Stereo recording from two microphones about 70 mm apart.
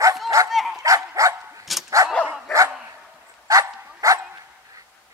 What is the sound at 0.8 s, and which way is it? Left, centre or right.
Dog, right.